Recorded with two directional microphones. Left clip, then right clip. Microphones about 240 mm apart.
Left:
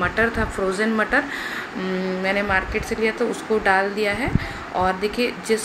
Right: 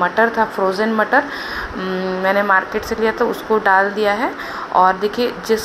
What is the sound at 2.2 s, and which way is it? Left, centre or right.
A woman's voice, centre.